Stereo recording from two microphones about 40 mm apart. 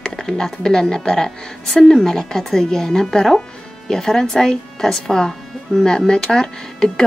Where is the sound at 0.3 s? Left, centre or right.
Centre.